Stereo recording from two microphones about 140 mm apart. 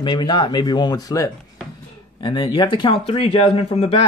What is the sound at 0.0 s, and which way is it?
Speech, 35° left (ahead or behind).